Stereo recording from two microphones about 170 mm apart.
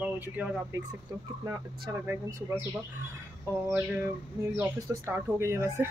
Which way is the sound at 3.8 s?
10° right (ahead or behind).